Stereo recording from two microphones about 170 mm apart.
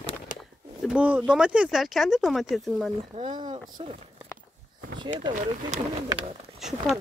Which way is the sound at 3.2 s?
25° right (ahead or behind).